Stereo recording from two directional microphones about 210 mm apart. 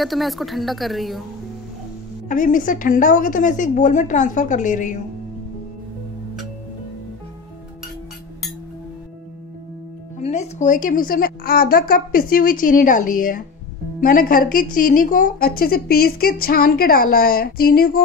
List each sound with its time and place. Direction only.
0.0 s a woman's voice: centre (ahead or behind)
2.2 s speech: 40° left (ahead or behind)
10.2 s a woman's voice: 30° left (ahead or behind)